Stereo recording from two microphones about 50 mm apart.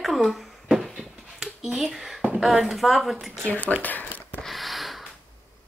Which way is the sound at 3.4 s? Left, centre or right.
Left.